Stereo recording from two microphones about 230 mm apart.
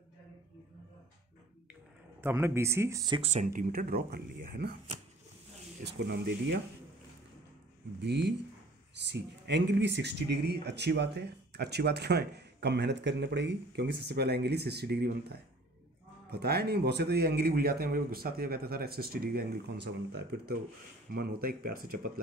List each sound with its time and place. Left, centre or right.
2.2 s speech: centre; by 3.4 s right
3.4 s speech: right
5.9 s speech: right
8.0 s speech: right